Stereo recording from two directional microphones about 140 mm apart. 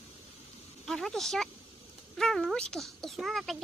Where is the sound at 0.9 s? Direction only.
Centre (ahead or behind).